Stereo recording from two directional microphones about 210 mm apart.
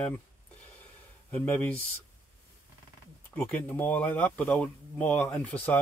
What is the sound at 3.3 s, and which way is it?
Speech, 10° left (ahead or behind).